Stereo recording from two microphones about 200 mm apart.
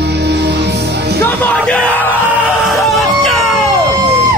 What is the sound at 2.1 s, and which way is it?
Music, 5° right (ahead or behind).